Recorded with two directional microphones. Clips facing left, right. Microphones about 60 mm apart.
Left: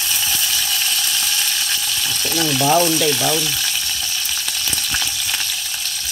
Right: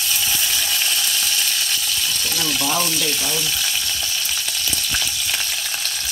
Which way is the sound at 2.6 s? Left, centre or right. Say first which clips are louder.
Left 9 dB; left.